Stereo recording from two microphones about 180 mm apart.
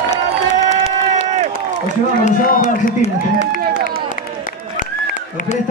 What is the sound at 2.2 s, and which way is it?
Run, 40° left (ahead or behind).